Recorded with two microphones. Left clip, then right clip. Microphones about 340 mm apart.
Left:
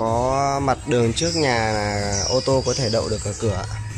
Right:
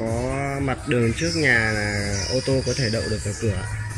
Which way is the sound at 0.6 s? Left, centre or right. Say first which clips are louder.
Left 3 dB; left.